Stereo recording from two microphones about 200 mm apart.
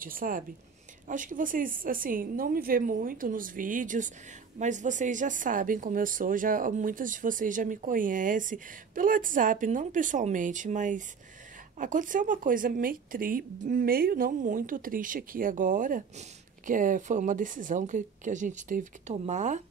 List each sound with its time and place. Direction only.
0.0 s a woman's voice: 45° right (ahead or behind)